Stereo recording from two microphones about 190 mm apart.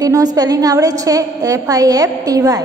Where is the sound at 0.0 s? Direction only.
20° right (ahead or behind).